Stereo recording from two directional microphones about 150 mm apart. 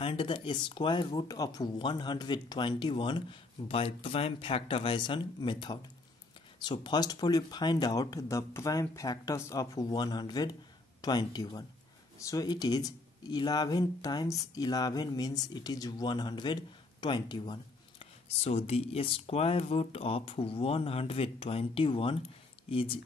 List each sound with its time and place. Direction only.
0.0 s speech: 35° left (ahead or behind)
18.4 s speech: 45° left (ahead or behind)